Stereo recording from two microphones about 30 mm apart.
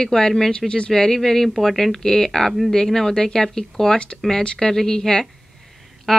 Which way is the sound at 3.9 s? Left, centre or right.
Left.